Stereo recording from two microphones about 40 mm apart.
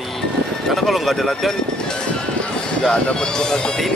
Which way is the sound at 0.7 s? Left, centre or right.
Centre.